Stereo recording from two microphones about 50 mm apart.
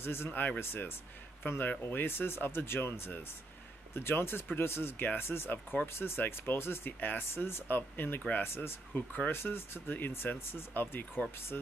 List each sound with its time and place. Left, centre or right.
0.0 s speech: left
0.3 s speech: left
0.6 s speech: left
1.6 s speech: left